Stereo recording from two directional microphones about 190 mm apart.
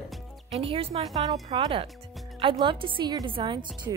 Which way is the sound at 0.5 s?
30° right (ahead or behind).